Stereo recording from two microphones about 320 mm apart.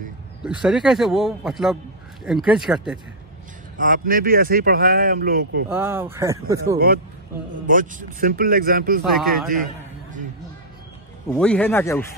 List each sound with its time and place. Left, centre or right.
0.5 s a man's voice: centre
3.7 s speech: right
5.7 s speech: centre
7.6 s speech: right
9.0 s a man's voice: centre
11.2 s a man's voice: centre